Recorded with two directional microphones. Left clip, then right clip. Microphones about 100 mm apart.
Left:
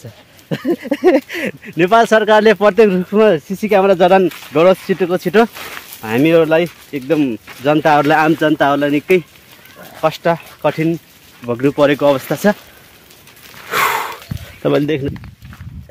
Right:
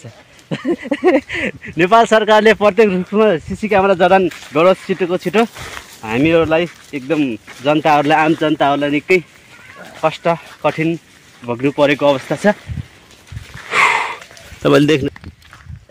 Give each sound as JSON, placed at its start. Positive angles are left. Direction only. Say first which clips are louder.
{"t": 0.5, "sound": "speech", "louder": "left 1 dB", "side_deg": 25}
{"t": 5.2, "sound": "speech", "louder": "left 4 dB", "side_deg": 45}
{"t": 5.5, "sound": "speech", "louder": "left 1 dB", "side_deg": 0}
{"t": 6.0, "sound": "speech", "louder": "left 2 dB", "side_deg": 40}
{"t": 10.3, "sound": "speech", "louder": "left 1 dB", "side_deg": 20}
{"t": 11.4, "sound": "speech", "louder": "left 1 dB", "side_deg": 35}
{"t": 12.3, "sound": "speech", "louder": "even", "side_deg": 10}
{"t": 13.7, "sound": "a sound", "louder": "right 3 dB", "side_deg": 25}
{"t": 14.6, "sound": "speech", "louder": "right 3 dB", "side_deg": -25}